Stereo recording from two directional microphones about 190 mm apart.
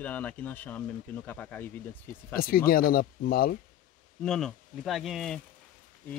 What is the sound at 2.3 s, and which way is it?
Speech, 50° left (ahead or behind).